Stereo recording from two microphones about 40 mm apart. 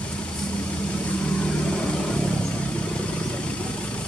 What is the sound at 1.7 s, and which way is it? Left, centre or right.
Vehicle, centre.